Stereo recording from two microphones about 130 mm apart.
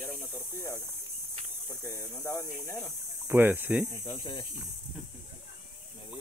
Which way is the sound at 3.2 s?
15° right (ahead or behind).